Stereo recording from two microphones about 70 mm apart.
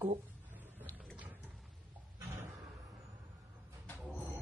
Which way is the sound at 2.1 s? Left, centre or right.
Right.